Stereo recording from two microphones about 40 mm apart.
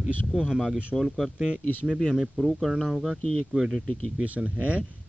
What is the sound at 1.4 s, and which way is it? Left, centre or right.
Speech, right.